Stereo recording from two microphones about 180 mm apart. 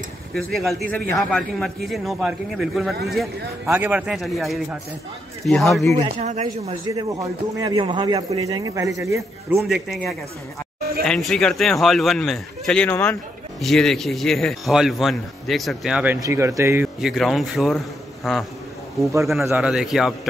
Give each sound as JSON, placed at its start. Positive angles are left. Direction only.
{"t": 0.3, "sound": "speech", "side_deg": 0}
{"t": 5.9, "sound": "speech", "side_deg": -40}
{"t": 6.9, "sound": "speech", "side_deg": -20}
{"t": 9.6, "sound": "speech", "side_deg": 0}
{"t": 13.6, "sound": "speech", "side_deg": 0}
{"t": 16.2, "sound": "speech", "side_deg": -15}
{"t": 19.5, "sound": "speech", "side_deg": -5}